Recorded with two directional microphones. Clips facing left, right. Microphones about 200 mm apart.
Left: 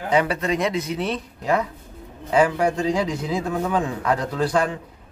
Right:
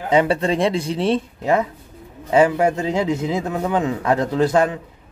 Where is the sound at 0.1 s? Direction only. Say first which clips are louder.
Right 4 dB; 25° right (ahead or behind).